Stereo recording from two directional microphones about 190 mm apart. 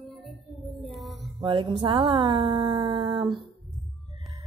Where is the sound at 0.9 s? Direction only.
Centre (ahead or behind).